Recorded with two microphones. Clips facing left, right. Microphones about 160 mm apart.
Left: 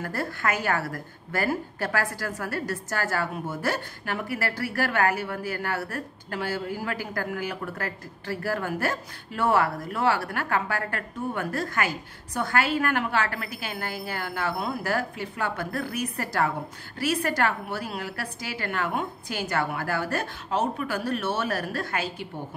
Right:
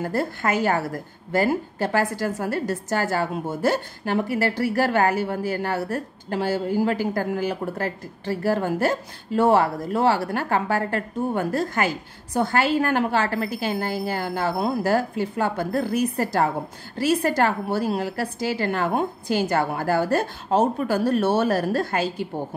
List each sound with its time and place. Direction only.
0.0 s a woman's voice: 25° right (ahead or behind)